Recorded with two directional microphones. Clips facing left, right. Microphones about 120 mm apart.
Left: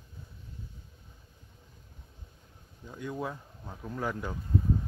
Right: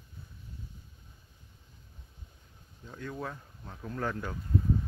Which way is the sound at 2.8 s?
15° left (ahead or behind).